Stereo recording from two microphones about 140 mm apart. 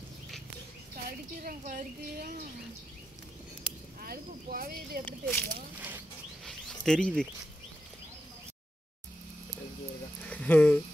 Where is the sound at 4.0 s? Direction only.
90° right.